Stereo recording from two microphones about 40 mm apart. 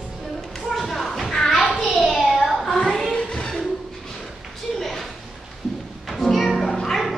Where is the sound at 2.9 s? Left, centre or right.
Centre.